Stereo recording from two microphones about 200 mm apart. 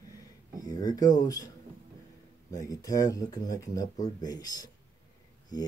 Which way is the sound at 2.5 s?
15° left (ahead or behind).